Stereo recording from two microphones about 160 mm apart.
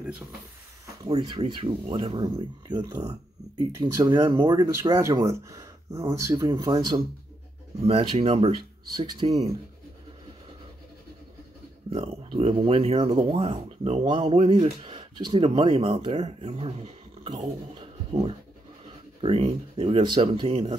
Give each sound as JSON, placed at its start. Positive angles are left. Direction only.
{"t": 1.0, "sound": "speech", "side_deg": -25}
{"t": 7.8, "sound": "speech", "side_deg": -35}
{"t": 11.9, "sound": "speech", "side_deg": -40}
{"t": 17.7, "sound": "a sound", "side_deg": -35}
{"t": 19.2, "sound": "speech", "side_deg": -40}